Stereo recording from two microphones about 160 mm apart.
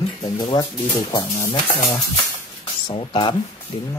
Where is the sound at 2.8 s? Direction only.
30° left (ahead or behind).